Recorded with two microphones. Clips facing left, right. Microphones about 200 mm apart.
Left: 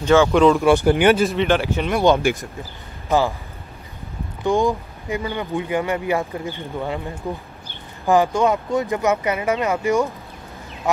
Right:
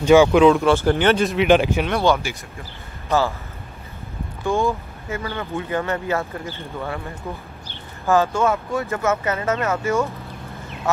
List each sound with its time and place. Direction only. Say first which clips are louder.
0.0 s speech: right 3 dB; 15° right (ahead or behind)
0.3 s speech: right 1 dB; centre (ahead or behind)
0.7 s speech: left 2 dB; 15° left (ahead or behind)
1.2 s speech: right 2 dB; centre (ahead or behind)
2.3 s speech: left 10 dB; 55° left (ahead or behind)
3.1 s speech: left 1 dB; 15° left (ahead or behind)
4.4 s speech: left 2 dB; 15° left (ahead or behind)
8.1 s speech: left 2 dB; 15° left (ahead or behind)